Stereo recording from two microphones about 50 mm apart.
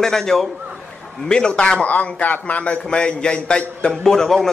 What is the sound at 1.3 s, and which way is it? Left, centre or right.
A man's voice, centre.